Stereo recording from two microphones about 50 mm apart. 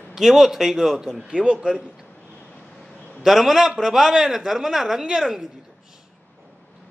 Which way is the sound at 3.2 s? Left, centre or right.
Centre.